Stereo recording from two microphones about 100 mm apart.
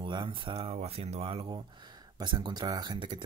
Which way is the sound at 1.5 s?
45° right (ahead or behind).